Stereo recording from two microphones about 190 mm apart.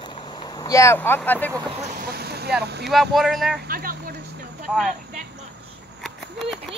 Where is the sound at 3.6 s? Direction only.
50° right (ahead or behind).